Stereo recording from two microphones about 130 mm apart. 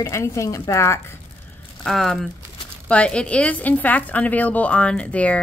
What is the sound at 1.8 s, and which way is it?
A woman's voice, centre (ahead or behind).